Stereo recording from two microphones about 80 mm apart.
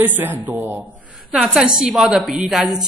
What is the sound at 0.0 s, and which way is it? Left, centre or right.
Speech, right.